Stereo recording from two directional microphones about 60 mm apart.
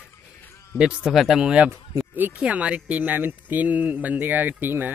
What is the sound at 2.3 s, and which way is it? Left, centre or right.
Speech, right.